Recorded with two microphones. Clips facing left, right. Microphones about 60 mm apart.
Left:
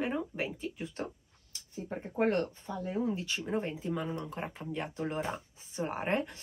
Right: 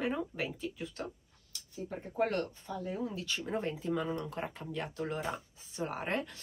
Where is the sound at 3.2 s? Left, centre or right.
Centre.